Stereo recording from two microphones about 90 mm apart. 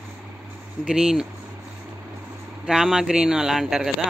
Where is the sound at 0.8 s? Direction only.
5° right (ahead or behind).